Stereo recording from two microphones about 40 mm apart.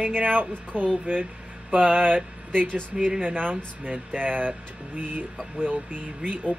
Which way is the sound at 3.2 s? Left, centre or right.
Right.